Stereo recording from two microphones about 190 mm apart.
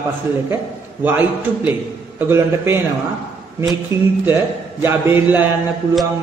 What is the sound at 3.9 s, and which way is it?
A man's voice, 15° right (ahead or behind).